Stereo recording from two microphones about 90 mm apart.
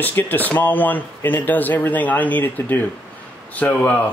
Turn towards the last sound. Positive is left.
turn(degrees=20)  # may be behind; listen again after turning